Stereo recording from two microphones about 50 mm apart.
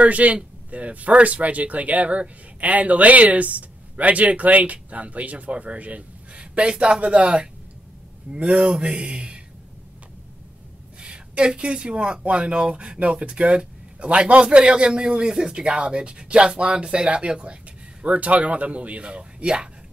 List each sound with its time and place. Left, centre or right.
0.0 s speech: right
11.0 s speech: centre